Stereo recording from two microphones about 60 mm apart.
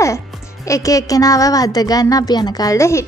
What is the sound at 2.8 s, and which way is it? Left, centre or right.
Speech, left.